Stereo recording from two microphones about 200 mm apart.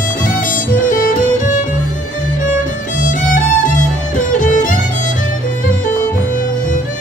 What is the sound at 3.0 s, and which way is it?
Music, 40° left (ahead or behind).